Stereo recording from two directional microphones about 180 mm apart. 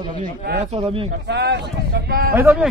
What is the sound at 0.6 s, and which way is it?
Speech, 35° right (ahead or behind).